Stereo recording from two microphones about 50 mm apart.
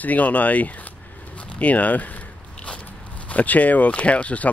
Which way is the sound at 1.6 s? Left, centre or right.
Left.